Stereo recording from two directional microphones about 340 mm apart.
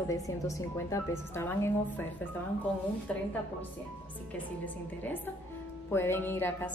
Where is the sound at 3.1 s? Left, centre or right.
Centre.